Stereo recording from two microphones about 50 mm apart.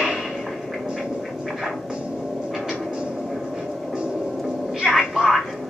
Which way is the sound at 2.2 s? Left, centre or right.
Centre.